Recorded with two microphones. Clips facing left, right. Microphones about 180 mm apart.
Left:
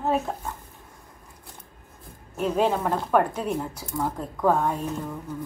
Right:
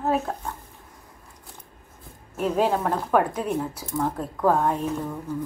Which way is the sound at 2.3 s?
5° right (ahead or behind).